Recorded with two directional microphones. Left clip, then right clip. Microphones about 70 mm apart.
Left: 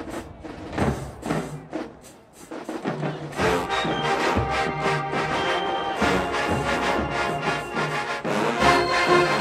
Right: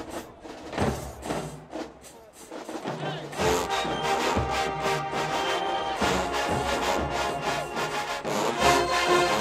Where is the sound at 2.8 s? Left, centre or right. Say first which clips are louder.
Left 2 dB; right.